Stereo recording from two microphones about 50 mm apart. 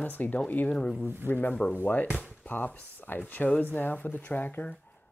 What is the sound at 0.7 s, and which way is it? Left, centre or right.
Speech, centre.